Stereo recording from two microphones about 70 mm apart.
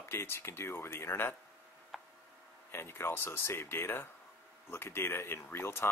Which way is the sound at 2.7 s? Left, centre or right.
Left.